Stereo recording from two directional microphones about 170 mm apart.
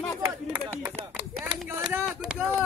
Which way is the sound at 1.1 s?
5° right (ahead or behind).